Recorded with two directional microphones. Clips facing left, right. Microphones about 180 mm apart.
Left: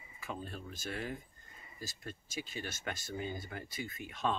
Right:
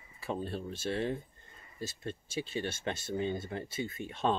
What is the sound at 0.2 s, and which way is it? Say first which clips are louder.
Speech: right 7 dB; 30° right (ahead or behind).